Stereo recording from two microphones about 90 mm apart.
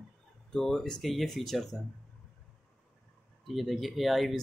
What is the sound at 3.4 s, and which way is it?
Speech, centre (ahead or behind).